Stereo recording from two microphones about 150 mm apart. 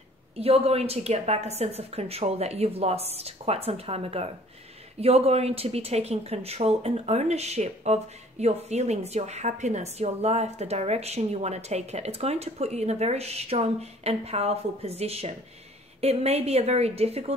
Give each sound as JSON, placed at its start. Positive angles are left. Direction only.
{"t": 0.4, "sound": "speech", "side_deg": -40}